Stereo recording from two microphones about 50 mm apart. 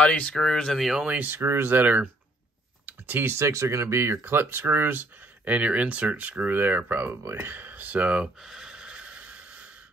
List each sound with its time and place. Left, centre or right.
0.3 s speech: centre
1.1 s speech: right
2.9 s computer keyboard: right
3.3 s speech: right
4.2 s speech: right
5.5 s speech: right
7.1 s speech: right
7.4 s speech: right
8.5 s a sound: centre